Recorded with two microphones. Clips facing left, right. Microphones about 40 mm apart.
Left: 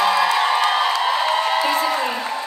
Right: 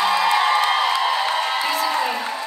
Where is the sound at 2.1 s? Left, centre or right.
Centre.